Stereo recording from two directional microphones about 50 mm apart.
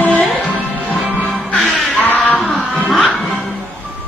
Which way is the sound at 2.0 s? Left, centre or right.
Left.